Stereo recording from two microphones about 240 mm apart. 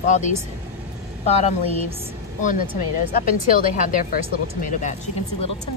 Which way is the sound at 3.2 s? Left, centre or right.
Left.